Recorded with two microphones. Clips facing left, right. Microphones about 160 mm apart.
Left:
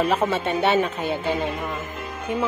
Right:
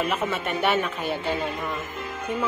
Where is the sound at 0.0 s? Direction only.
40° left (ahead or behind).